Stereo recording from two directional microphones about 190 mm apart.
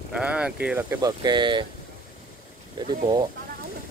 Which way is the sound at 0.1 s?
5° right (ahead or behind).